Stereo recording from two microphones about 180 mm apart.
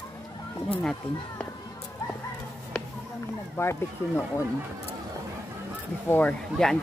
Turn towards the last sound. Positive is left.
turn(degrees=5)  # may be behind; listen again after turning